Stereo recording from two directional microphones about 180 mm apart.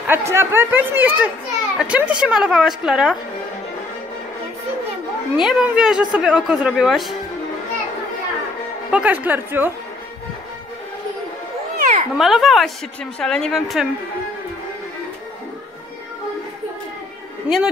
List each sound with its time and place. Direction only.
0.0 s a woman's voice: 15° right (ahead or behind)
5.3 s a woman's voice: 5° right (ahead or behind)
8.9 s speech: 10° right (ahead or behind)
11.8 s a sound: 50° right (ahead or behind)
12.2 s a woman's voice: centre (ahead or behind)